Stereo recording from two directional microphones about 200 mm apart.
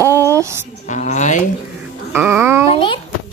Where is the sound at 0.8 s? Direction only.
40° left (ahead or behind).